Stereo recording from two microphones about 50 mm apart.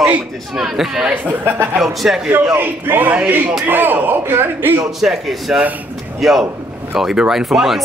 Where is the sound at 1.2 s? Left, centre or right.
Right.